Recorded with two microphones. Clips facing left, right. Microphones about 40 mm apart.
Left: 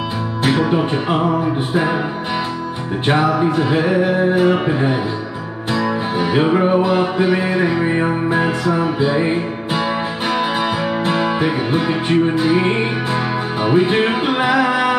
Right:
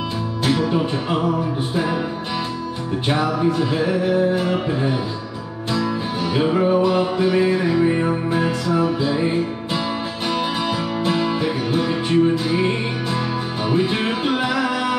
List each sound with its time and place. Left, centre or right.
0.4 s music: left
3.1 s music: left
11.1 s music: centre